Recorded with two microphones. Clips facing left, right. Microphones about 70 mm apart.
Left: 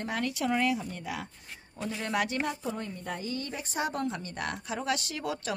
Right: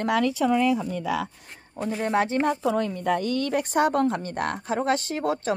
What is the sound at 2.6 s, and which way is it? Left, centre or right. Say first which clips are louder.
A woman's voice: right 11 dB; right.